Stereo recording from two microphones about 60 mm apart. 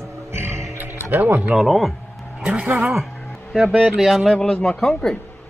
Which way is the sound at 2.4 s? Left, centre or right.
Centre.